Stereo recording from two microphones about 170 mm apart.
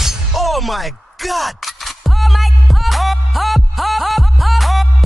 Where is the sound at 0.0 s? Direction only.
Centre (ahead or behind).